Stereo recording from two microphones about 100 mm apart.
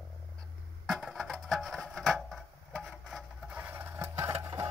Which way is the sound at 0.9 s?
Centre (ahead or behind).